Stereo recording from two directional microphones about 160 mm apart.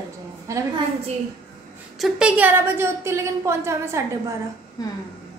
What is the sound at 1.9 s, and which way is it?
A woman's voice, 5° right (ahead or behind).